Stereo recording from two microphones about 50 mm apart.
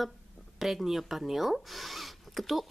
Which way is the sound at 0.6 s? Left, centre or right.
Centre.